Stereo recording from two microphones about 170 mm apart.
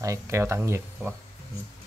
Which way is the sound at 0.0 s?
15° right (ahead or behind).